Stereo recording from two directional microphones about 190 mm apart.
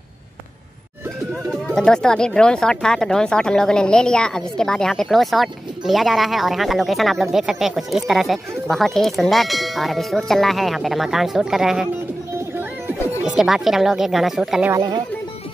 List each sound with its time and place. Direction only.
1.8 s speech: 5° left (ahead or behind)
14.7 s speech: 15° right (ahead or behind)